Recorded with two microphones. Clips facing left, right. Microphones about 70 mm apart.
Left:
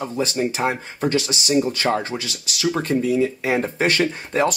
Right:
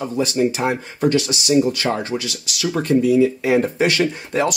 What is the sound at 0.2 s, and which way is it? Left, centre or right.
Speech, left.